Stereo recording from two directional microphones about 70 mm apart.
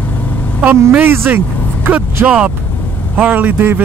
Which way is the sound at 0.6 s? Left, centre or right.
Right.